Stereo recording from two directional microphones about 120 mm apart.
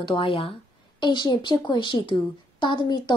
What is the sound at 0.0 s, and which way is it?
A woman's voice, 50° left (ahead or behind).